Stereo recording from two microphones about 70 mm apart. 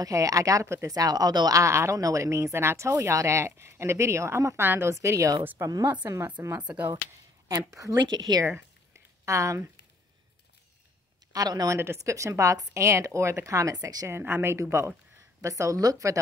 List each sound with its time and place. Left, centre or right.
0.0 s speech: right
0.8 s speech: right
1.6 s speech: right
4.9 s speech: right
5.6 s speech: right
6.4 s speech: right
7.4 s speech: right
8.0 s a woman's voice: right
9.2 s speech: right
11.3 s speech: right
11.7 s speech: right
14.0 s speech: right